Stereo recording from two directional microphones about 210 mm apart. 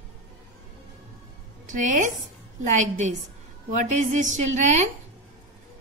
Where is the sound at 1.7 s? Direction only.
40° right (ahead or behind).